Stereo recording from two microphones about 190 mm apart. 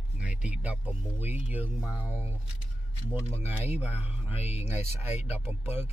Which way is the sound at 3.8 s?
10° right (ahead or behind).